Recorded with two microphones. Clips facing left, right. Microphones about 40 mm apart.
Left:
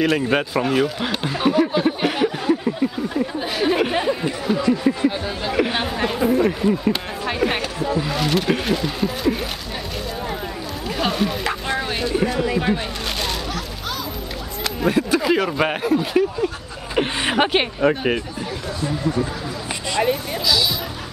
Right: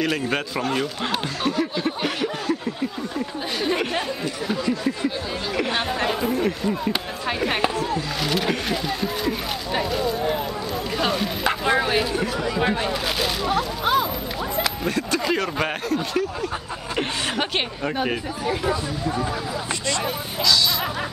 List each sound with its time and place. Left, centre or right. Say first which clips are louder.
0.0 s a sound: left 5 dB; centre
3.5 s speech: left 4 dB; centre
4.5 s speech: left 6 dB; centre
5.0 s chatter: left 4 dB; centre
6.9 s speech: left 3 dB; centre
11.0 s bow-wow: left 3 dB; centre
11.4 s music: right 3 dB; centre
12.5 s a sound: even; centre
13.5 s a sound: right 7 dB; right
14.8 s speech: left 5 dB; centre
20.1 s speech: left 2 dB; centre